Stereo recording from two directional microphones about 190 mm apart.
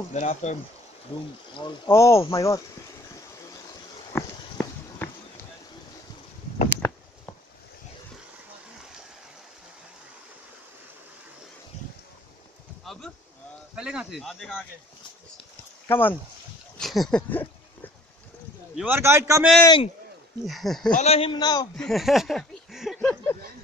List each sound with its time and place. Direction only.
0.1 s speech: 35° left (ahead or behind)
1.9 s speech: 15° left (ahead or behind)
4.1 s walk: 10° left (ahead or behind)
6.8 s a sound: 15° left (ahead or behind)
12.8 s a sound: centre (ahead or behind)
13.7 s speech: 5° right (ahead or behind)
15.9 s speech: 10° left (ahead or behind)
18.8 s speech: 10° right (ahead or behind)
19.6 s a man's voice: 25° left (ahead or behind)
20.4 s speech: centre (ahead or behind)
20.9 s a man's voice: 35° left (ahead or behind)
21.7 s a sound: centre (ahead or behind)
22.9 s a sound: 10° left (ahead or behind)